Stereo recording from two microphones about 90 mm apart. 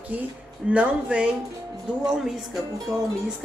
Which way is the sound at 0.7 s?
15° right (ahead or behind).